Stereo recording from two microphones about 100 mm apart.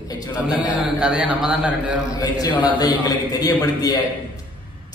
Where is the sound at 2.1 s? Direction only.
40° left (ahead or behind).